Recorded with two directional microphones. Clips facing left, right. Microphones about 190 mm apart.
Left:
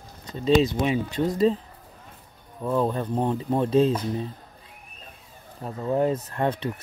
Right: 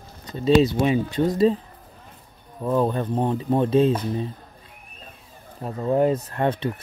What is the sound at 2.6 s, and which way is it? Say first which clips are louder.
Speech: right 2 dB; 5° right (ahead or behind).